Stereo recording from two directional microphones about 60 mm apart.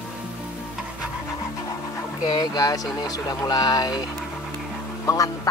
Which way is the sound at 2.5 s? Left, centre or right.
Left.